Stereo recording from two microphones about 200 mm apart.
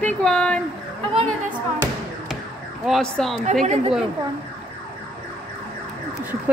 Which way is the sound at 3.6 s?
35° right (ahead or behind).